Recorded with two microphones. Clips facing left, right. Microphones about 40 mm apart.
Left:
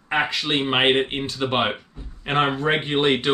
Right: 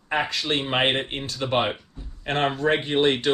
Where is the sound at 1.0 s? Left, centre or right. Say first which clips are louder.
Left 4 dB; left.